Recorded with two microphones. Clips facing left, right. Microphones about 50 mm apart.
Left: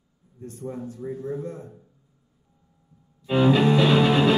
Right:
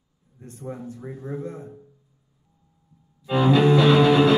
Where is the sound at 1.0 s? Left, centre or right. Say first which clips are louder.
Left 2 dB; right.